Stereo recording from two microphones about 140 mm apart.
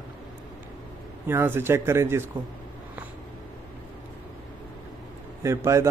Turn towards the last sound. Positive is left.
turn(degrees=-20)  # may be behind; listen again after turning